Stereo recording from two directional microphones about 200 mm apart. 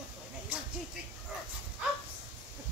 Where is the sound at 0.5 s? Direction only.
5° right (ahead or behind).